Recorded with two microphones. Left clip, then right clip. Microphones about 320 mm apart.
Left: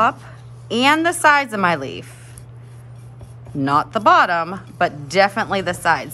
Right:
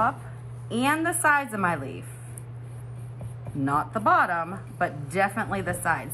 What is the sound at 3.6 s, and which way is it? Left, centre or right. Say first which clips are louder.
Speech: left 9 dB; centre.